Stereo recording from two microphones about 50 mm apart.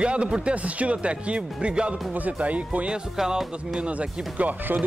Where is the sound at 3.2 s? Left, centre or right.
Centre.